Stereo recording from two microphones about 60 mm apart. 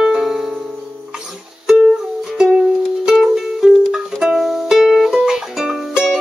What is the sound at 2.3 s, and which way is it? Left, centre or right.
Music, centre.